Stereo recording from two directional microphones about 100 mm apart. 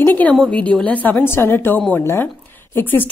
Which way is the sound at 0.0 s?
20° left (ahead or behind).